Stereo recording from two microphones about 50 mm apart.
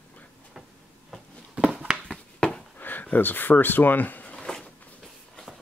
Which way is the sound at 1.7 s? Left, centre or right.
Right.